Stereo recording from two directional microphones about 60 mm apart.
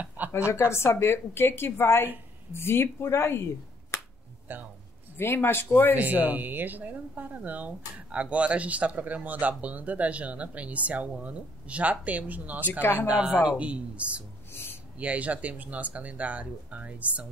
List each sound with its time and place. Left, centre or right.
0.5 s a woman's voice: left
4.5 s speech: right
5.1 s speech: left
5.9 s speech: right
14.5 s a sound: left
15.0 s speech: right